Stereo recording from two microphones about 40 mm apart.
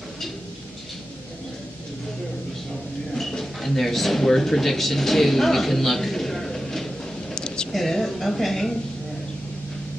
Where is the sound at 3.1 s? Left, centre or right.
Centre.